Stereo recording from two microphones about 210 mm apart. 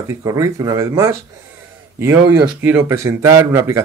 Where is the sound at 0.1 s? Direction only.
15° right (ahead or behind).